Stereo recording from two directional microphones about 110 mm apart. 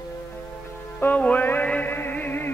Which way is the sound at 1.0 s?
15° left (ahead or behind).